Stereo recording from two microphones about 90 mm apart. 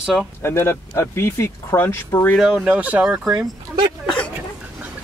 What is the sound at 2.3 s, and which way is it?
Speech, 5° right (ahead or behind).